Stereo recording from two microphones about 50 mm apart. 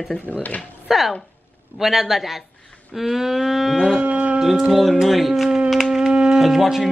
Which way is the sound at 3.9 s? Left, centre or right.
Right.